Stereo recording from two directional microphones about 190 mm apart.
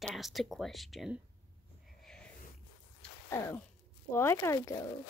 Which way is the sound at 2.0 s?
5° left (ahead or behind).